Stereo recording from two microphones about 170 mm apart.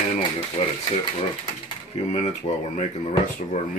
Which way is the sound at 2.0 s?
40° left (ahead or behind).